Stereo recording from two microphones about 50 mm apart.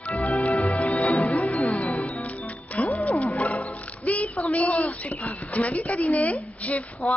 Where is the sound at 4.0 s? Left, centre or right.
Left.